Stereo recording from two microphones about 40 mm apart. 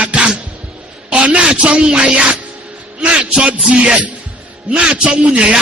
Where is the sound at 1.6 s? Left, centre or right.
Right.